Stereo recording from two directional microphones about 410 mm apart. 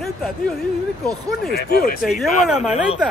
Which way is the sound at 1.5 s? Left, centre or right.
Left.